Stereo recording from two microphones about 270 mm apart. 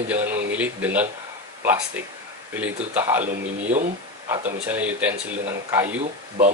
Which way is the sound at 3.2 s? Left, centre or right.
Right.